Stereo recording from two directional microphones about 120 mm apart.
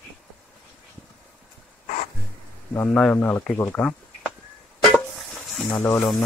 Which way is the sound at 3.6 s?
10° left (ahead or behind).